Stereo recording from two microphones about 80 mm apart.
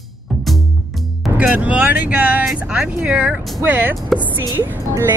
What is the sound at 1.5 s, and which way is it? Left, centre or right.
Speech, centre.